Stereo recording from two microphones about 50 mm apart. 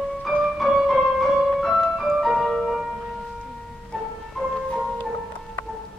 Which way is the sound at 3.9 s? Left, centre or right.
Centre.